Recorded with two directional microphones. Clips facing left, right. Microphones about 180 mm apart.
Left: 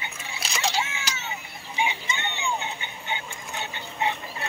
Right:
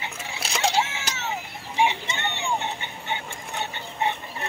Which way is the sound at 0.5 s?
60° right (ahead or behind).